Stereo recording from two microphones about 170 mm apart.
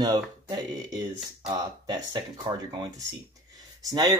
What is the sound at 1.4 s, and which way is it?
Speech, 25° right (ahead or behind).